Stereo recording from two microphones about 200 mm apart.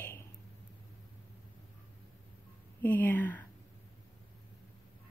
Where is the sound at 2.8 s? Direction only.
10° left (ahead or behind).